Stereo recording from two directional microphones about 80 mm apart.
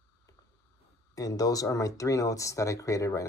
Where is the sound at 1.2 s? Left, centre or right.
Left.